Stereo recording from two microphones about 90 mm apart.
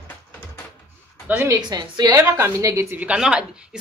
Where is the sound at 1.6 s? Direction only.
50° right (ahead or behind).